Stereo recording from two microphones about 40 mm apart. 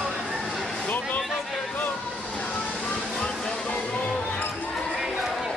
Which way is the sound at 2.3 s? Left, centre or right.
Left.